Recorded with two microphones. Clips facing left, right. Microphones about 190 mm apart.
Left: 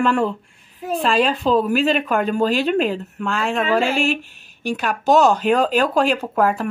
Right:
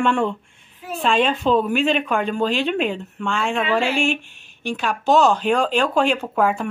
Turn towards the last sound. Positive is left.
turn(degrees=0)  # may be behind; listen again after turning